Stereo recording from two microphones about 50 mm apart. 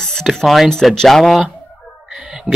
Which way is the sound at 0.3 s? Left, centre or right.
Centre.